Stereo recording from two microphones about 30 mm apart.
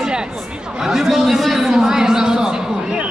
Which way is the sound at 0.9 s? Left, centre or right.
Centre.